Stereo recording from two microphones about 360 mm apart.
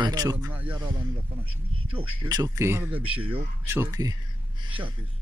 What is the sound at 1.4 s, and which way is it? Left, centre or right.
Speech, right.